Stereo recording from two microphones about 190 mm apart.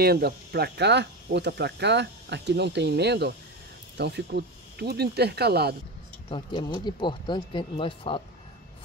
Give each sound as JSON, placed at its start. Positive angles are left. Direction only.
{"t": 0.0, "sound": "speech", "side_deg": -55}
{"t": 6.2, "sound": "speech", "side_deg": 25}